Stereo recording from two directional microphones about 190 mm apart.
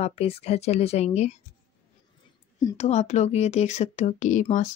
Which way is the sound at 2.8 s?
35° left (ahead or behind).